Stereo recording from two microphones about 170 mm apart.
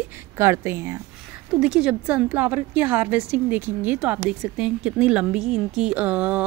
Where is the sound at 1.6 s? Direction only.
5° right (ahead or behind).